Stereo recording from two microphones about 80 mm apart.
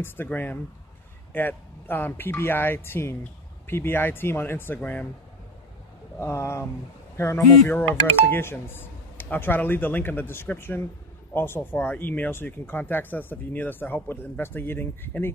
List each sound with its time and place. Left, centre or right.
0.0 s speech: left
6.1 s speech: left